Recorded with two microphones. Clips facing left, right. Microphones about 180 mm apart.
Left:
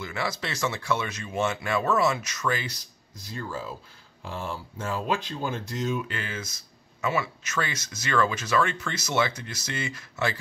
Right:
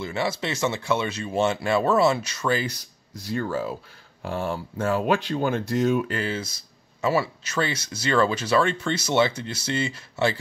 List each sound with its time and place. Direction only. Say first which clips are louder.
0.0 s speech: right 5 dB; 25° right (ahead or behind)
3.3 s speech: right 8 dB; 65° right (ahead or behind)
6.0 s speech: right 7 dB; 35° right (ahead or behind)